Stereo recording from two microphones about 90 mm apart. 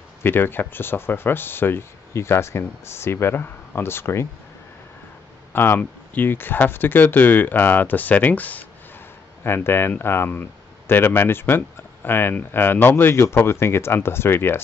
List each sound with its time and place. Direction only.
0.2 s speech: 25° left (ahead or behind)
5.5 s speech: 25° left (ahead or behind)